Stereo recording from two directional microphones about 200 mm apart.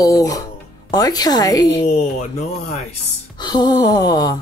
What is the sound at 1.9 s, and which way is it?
Speech, 35° left (ahead or behind).